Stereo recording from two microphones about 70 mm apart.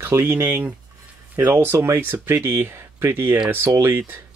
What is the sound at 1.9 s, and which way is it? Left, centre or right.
Speech, right.